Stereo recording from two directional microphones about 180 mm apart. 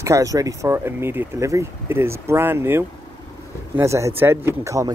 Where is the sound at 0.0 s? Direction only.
15° right (ahead or behind).